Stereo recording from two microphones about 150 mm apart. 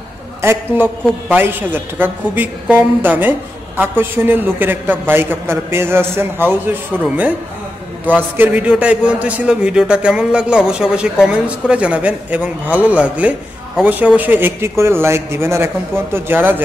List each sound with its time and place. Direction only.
0.4 s a woman's voice: 15° right (ahead or behind)